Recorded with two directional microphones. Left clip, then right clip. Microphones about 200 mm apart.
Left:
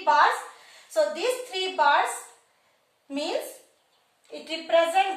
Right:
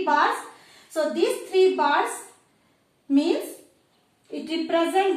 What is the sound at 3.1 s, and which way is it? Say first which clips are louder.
A woman's voice: right 6 dB; centre (ahead or behind).